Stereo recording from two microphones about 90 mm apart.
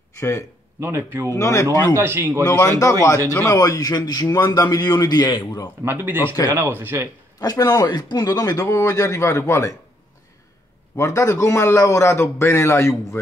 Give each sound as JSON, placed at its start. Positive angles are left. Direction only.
{"t": 0.2, "sound": "a man's voice", "side_deg": 30}
{"t": 0.7, "sound": "speech", "side_deg": -25}
{"t": 1.3, "sound": "a man's voice", "side_deg": 35}
{"t": 2.0, "sound": "speech", "side_deg": -25}
{"t": 2.6, "sound": "a man's voice", "side_deg": 40}
{"t": 5.9, "sound": "speech", "side_deg": -20}
{"t": 7.3, "sound": "a man's voice", "side_deg": 45}
{"t": 11.0, "sound": "a man's voice", "side_deg": 35}